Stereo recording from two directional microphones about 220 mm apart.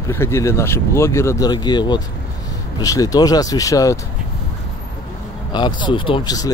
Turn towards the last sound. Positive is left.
turn(degrees=20)  # may be behind; listen again after turning